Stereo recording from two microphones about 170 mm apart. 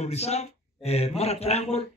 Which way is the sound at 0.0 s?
40° left (ahead or behind).